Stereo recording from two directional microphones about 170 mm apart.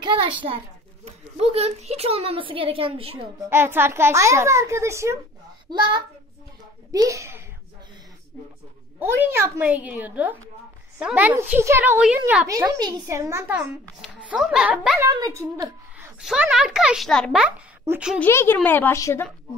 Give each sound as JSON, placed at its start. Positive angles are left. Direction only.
{"t": 0.0, "sound": "a woman's voice", "side_deg": -30}
{"t": 3.3, "sound": "a child's voice", "side_deg": -15}
{"t": 5.7, "sound": "a woman's voice", "side_deg": -25}
{"t": 9.0, "sound": "a child's voice", "side_deg": -15}
{"t": 12.4, "sound": "a woman's voice", "side_deg": -20}
{"t": 13.6, "sound": "a child's voice", "side_deg": -5}
{"t": 15.0, "sound": "a woman's voice", "side_deg": -20}
{"t": 16.2, "sound": "a child's voice", "side_deg": -5}
{"t": 18.2, "sound": "speech", "side_deg": 15}